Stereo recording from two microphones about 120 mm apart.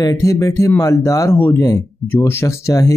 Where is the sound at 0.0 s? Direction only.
30° left (ahead or behind).